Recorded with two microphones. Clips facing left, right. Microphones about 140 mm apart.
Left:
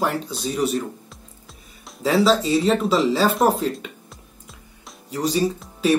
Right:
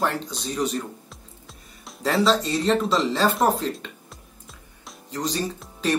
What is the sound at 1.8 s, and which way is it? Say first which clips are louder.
Speech: left 3 dB; centre (ahead or behind).